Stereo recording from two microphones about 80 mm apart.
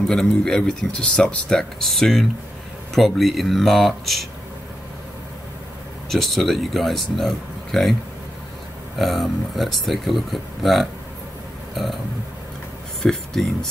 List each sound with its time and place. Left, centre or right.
0.1 s speech: centre
6.0 s speech: centre
8.9 s speech: centre
11.7 s burping: centre
13.0 s speech: centre